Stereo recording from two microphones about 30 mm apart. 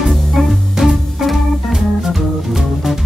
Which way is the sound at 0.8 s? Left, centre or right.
Centre.